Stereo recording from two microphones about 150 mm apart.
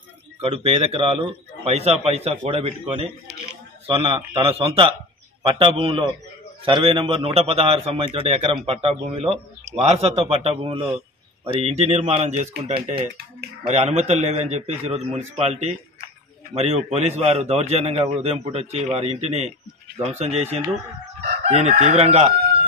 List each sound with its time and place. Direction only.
0.4 s a man's voice: 40° right (ahead or behind)
21.5 s a man's voice: 45° right (ahead or behind)